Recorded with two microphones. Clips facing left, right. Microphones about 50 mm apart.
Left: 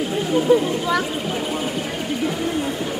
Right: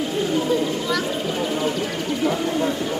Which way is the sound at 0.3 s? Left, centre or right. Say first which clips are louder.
Left 7 dB; centre.